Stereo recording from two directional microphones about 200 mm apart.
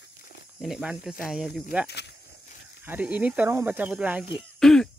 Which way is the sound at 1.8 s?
55° left (ahead or behind).